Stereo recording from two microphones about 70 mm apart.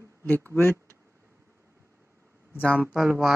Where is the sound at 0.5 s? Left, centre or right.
Left.